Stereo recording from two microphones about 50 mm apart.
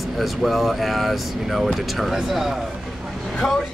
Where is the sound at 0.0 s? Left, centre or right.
Centre.